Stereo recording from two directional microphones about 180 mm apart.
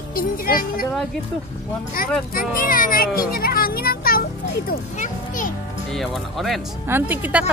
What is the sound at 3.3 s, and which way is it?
Children playing, 55° left (ahead or behind).